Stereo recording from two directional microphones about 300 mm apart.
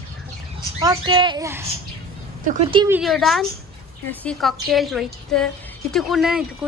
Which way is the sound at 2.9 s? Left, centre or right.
Centre.